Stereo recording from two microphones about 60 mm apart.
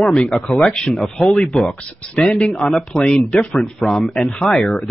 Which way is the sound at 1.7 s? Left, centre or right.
Left.